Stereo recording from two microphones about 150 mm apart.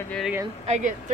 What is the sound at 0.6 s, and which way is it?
Speech, 50° right (ahead or behind).